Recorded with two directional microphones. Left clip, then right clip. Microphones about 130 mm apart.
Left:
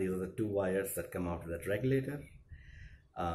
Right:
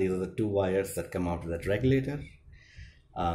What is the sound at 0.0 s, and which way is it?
Speech, 20° right (ahead or behind).